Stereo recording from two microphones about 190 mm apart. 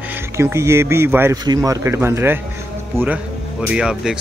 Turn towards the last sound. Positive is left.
turn(degrees=-5)  # may be behind; listen again after turning